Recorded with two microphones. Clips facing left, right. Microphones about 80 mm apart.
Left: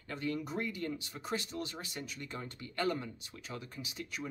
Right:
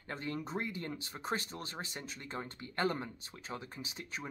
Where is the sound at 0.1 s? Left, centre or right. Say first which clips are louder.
Left 2 dB; right.